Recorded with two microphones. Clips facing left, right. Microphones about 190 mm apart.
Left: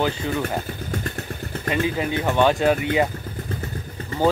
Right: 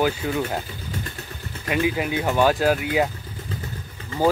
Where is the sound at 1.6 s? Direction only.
5° right (ahead or behind).